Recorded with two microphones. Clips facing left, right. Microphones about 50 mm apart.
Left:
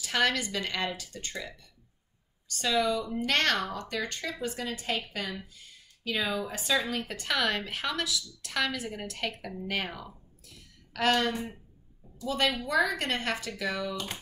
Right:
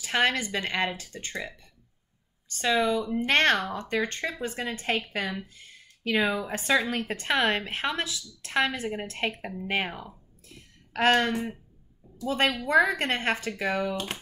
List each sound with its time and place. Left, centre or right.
0.0 s speech: right
10.5 s a sound: right
12.2 s speech: right